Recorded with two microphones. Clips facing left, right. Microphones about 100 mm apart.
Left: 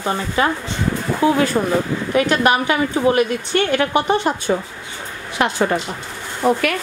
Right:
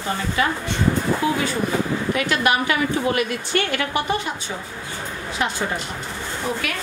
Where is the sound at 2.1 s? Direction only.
35° left (ahead or behind).